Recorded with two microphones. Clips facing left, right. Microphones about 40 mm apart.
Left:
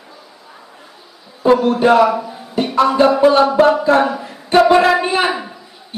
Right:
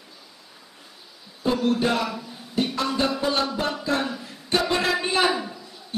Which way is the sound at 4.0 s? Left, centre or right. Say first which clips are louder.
Left 12 dB; left.